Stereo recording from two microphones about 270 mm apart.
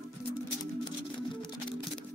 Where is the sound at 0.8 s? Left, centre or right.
Centre.